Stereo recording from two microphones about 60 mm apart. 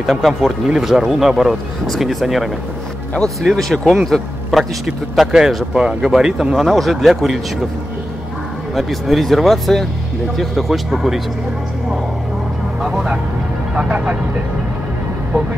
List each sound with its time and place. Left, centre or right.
0.0 s speech: centre
8.7 s speech: centre
13.7 s speech: right